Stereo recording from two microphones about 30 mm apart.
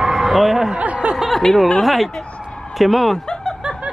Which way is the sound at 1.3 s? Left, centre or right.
Centre.